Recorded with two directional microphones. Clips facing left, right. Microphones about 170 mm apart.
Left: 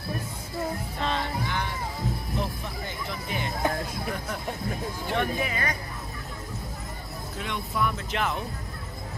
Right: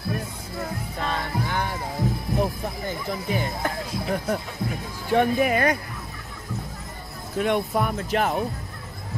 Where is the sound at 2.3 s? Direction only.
45° right (ahead or behind).